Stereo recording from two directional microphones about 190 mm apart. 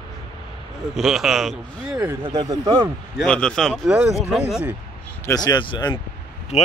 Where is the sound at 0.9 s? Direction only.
Centre (ahead or behind).